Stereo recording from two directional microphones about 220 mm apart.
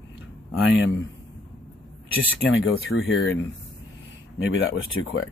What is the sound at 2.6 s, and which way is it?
Speech, 60° left (ahead or behind).